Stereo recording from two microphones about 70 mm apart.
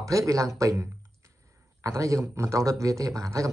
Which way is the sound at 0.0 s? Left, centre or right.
Right.